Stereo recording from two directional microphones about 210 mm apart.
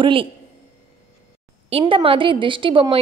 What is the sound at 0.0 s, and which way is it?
Speech, 25° right (ahead or behind).